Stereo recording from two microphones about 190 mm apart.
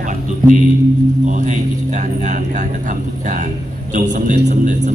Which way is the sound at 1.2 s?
40° right (ahead or behind).